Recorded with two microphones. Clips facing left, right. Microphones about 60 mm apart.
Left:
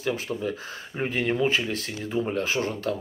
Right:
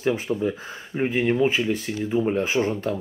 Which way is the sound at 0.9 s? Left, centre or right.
Centre.